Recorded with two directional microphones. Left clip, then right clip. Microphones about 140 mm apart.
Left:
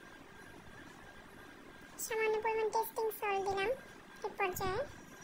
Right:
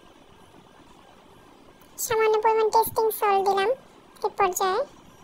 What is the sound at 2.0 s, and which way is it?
A child's voice, 45° right (ahead or behind).